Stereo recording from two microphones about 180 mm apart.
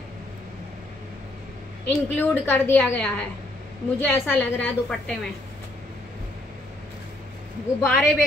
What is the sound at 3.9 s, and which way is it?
A woman's voice, 10° left (ahead or behind).